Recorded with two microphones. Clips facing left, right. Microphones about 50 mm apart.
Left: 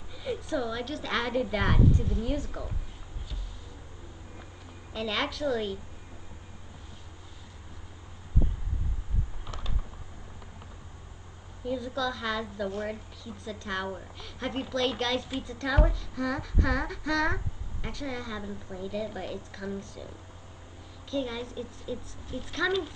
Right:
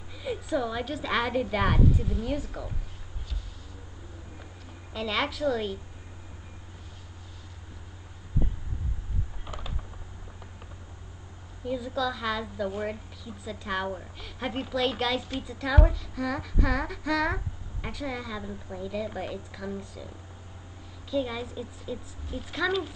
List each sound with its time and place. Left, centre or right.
0.1 s a woman's voice: centre
4.9 s a woman's voice: centre
9.4 s mechanisms: centre
11.6 s a woman's voice: centre
19.3 s a woman's voice: centre
21.1 s a woman's voice: centre